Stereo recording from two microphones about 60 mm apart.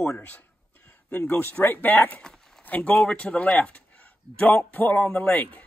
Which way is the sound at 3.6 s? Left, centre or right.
Left.